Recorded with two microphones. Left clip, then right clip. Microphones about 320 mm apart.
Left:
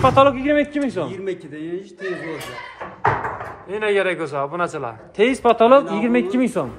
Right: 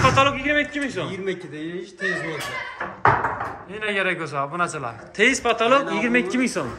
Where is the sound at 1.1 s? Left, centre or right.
Left.